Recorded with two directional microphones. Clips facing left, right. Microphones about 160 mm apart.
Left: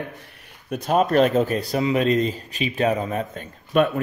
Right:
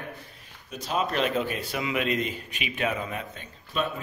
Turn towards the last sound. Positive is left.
turn(degrees=60)  # may be behind; listen again after turning